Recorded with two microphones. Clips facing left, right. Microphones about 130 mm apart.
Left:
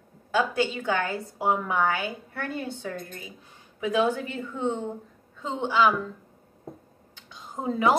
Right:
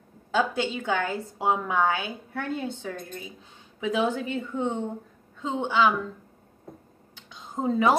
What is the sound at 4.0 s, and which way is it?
A woman's voice, 15° right (ahead or behind).